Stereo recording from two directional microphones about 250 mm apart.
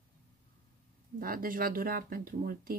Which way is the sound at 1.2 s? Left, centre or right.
Right.